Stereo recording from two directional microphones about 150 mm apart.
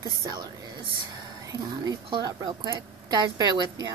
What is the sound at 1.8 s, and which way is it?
A woman's voice, 25° right (ahead or behind).